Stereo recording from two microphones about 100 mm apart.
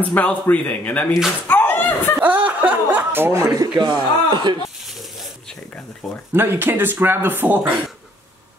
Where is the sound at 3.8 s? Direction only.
50° right (ahead or behind).